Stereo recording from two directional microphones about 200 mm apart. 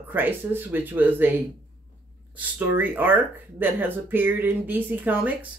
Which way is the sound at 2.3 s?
10° right (ahead or behind).